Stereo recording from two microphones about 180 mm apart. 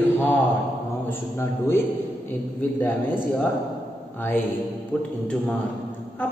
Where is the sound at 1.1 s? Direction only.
15° left (ahead or behind).